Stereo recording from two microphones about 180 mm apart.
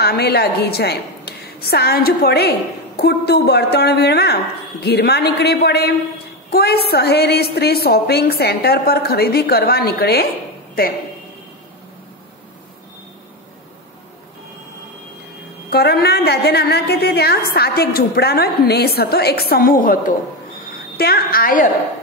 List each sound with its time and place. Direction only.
0.0 s a woman's voice: 60° left (ahead or behind)
15.7 s a woman's voice: 60° left (ahead or behind)